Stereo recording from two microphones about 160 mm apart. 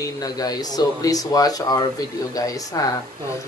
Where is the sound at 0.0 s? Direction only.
25° left (ahead or behind).